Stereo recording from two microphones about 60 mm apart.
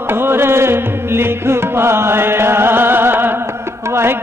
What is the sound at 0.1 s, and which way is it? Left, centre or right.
Music, right.